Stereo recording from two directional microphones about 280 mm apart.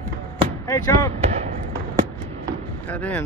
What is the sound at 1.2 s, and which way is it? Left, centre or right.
Basketball bounce, right.